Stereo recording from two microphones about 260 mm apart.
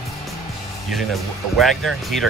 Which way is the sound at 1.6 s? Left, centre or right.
Centre.